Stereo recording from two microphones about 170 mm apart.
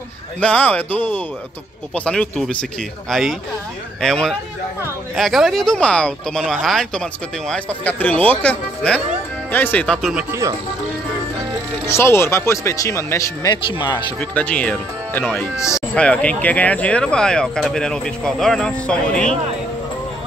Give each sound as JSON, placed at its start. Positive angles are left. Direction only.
{"t": 0.4, "sound": "speech", "side_deg": 10}
{"t": 10.1, "sound": "speech", "side_deg": -15}
{"t": 11.9, "sound": "speech", "side_deg": 15}
{"t": 14.3, "sound": "speech", "side_deg": 10}